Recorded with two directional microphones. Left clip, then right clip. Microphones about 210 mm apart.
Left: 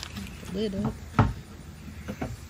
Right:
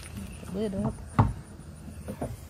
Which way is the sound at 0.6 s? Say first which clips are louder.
Left 1 dB; 5° right (ahead or behind).